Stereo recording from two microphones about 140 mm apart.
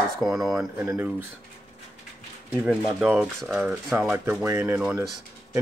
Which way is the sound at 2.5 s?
5° right (ahead or behind).